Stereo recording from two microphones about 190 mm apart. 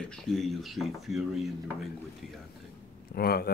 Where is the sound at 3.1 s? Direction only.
55° left (ahead or behind).